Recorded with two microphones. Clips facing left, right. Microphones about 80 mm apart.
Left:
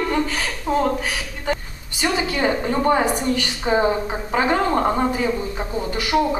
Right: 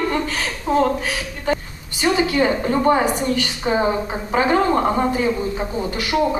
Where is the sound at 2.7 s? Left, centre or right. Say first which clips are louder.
Right 2 dB; centre.